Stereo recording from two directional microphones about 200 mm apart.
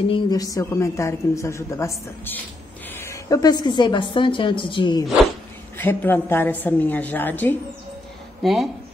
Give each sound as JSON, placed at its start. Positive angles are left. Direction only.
{"t": 0.1, "sound": "a woman's voice", "side_deg": 20}
{"t": 5.8, "sound": "a woman's voice", "side_deg": 10}